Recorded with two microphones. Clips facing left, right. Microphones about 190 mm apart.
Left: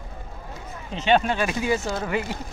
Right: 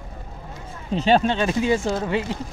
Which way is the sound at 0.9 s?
35° right (ahead or behind).